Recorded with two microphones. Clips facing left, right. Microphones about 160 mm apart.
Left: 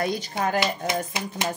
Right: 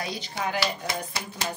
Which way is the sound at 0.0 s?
50° left (ahead or behind).